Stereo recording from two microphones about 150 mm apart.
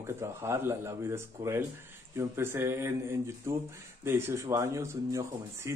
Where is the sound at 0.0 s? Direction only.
20° right (ahead or behind).